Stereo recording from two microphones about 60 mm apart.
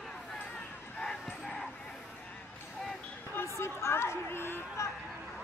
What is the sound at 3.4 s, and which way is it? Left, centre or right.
Chatter, left.